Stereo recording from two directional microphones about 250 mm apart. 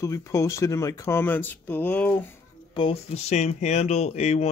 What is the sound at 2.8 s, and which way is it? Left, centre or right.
Speech, left.